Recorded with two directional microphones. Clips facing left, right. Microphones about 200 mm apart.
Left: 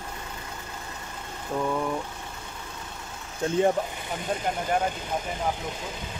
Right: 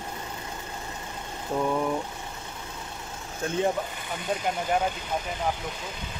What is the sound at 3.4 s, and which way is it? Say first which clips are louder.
Speech: left 3 dB; 25° left (ahead or behind).